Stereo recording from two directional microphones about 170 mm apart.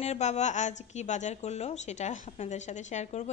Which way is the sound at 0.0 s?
40° left (ahead or behind).